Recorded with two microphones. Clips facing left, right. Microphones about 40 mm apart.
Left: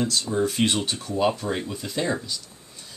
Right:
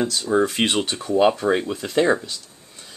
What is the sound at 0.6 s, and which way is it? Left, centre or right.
Speech, right.